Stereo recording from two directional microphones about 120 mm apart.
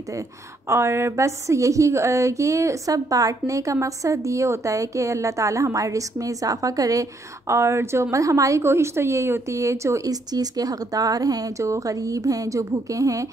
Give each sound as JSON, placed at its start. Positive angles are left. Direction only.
{"t": 0.7, "sound": "a woman's voice", "side_deg": -20}